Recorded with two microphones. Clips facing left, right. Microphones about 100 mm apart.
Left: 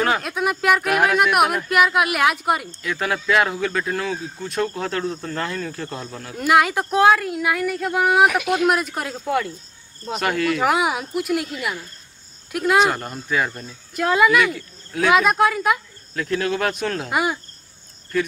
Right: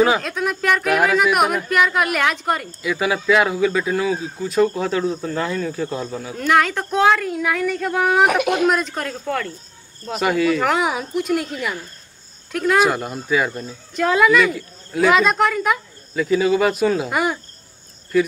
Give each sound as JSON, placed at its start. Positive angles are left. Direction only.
{"t": 0.0, "sound": "speech", "side_deg": 0}
{"t": 2.7, "sound": "speech", "side_deg": -5}
{"t": 6.3, "sound": "speech", "side_deg": 10}
{"t": 8.3, "sound": "speech", "side_deg": -55}
{"t": 8.6, "sound": "speech", "side_deg": 10}
{"t": 10.0, "sound": "speech", "side_deg": 0}
{"t": 12.5, "sound": "speech", "side_deg": 0}